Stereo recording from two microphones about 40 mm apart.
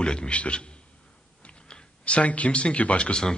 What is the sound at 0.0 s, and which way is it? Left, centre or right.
A man's voice, left.